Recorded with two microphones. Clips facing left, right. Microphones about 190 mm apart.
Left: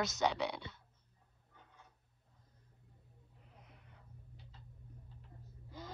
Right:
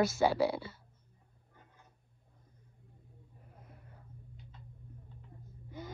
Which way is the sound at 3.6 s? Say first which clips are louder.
Right 6 dB; 75° left (ahead or behind).